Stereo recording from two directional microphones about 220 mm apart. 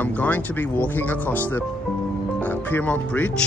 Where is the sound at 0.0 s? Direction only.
10° left (ahead or behind).